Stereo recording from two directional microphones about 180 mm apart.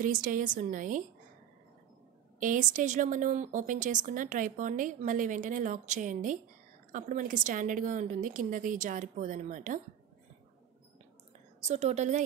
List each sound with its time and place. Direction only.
0.0 s speech: 50° right (ahead or behind)
2.4 s speech: 45° right (ahead or behind)
11.6 s a woman's voice: 40° right (ahead or behind)